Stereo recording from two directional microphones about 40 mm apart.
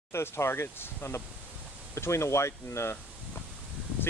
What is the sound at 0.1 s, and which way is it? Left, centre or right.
Speech, left.